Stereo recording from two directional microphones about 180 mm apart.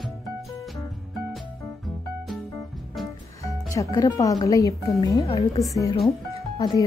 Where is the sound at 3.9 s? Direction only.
20° left (ahead or behind).